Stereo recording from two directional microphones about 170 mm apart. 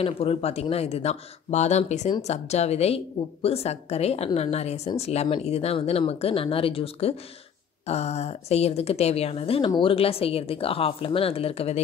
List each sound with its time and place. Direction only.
0.0 s a woman's voice: 35° left (ahead or behind)